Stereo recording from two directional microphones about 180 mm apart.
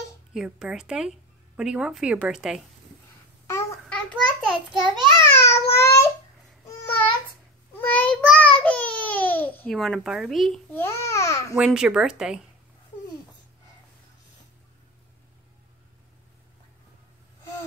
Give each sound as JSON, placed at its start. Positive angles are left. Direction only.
{"t": 0.3, "sound": "speech", "side_deg": -5}
{"t": 3.9, "sound": "a sound", "side_deg": 5}
{"t": 4.9, "sound": "a child's voice", "side_deg": -25}
{"t": 5.2, "sound": "child singing", "side_deg": 15}
{"t": 6.7, "sound": "babbling", "side_deg": 15}
{"t": 7.8, "sound": "child singing", "side_deg": 10}
{"t": 10.7, "sound": "a child's voice", "side_deg": 15}
{"t": 11.5, "sound": "speech", "side_deg": -5}